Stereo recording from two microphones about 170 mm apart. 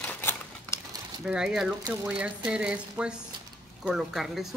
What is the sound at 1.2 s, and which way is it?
Speech, 5° right (ahead or behind).